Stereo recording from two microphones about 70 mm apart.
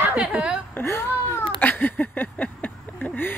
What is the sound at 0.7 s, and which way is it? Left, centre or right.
Speech, left.